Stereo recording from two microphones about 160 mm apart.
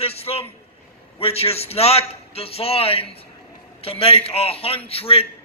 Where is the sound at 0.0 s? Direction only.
40° left (ahead or behind).